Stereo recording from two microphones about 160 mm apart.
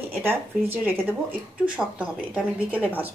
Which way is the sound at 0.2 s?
10° right (ahead or behind).